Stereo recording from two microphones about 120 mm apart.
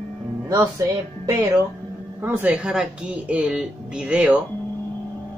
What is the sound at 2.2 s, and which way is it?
Speech, 15° right (ahead or behind).